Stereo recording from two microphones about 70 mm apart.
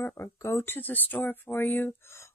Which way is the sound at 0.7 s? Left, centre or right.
Left.